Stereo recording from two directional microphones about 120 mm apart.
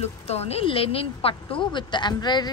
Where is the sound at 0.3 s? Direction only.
60° left (ahead or behind).